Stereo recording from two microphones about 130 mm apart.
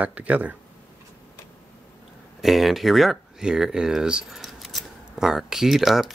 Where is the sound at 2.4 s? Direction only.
Centre (ahead or behind).